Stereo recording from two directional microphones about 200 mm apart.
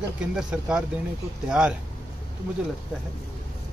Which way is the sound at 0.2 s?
5° right (ahead or behind).